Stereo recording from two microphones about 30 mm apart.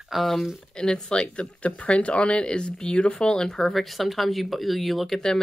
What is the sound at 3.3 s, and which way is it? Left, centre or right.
Speech, centre.